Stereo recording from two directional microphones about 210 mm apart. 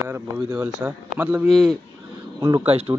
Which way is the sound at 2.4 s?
20° right (ahead or behind).